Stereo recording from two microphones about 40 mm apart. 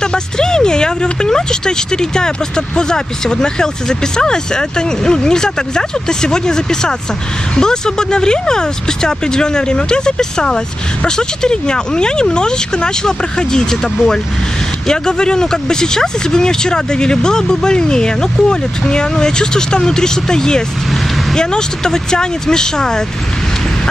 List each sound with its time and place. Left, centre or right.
0.0 s speech: centre